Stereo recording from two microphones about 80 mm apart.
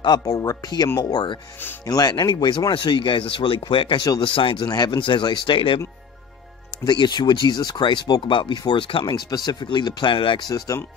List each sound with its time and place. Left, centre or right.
0.0 s speech: left
1.9 s speech: left
4.2 s speech: left
4.6 s speech: left
6.8 s speech: left